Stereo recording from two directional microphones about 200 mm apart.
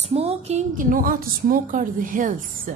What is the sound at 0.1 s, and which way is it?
A woman's voice, 30° right (ahead or behind).